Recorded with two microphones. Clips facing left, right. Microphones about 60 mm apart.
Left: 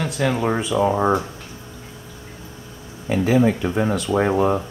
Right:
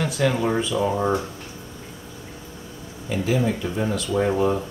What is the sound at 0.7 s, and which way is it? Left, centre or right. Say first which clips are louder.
Speech: left 4 dB; left.